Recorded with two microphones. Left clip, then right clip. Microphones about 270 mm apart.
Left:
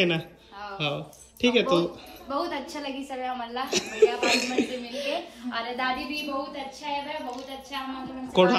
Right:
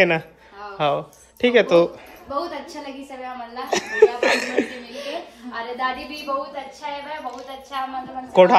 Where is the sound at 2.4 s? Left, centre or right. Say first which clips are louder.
Right 1 dB; centre.